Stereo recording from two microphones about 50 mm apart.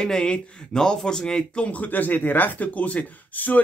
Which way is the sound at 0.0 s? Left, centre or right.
Centre.